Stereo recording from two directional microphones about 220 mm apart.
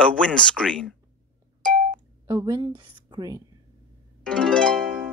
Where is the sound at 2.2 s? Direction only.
15° right (ahead or behind).